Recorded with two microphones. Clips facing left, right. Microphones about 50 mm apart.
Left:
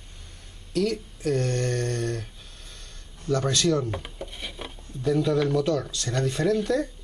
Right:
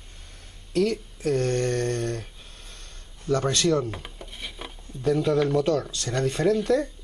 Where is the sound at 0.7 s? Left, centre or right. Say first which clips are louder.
Right 2 dB; right.